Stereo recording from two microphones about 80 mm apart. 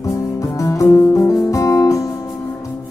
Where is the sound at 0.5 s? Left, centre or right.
Left.